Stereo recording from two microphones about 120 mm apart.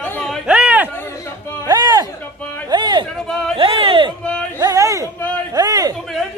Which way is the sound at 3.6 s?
50° right (ahead or behind).